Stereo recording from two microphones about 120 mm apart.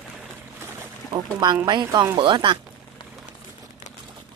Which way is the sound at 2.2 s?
45° right (ahead or behind).